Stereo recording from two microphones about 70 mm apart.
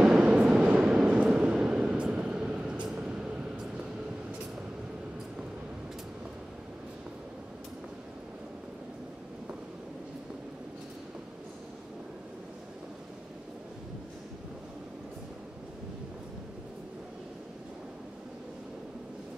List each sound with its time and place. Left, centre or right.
0.0 s train: centre
3.0 s vehicle: centre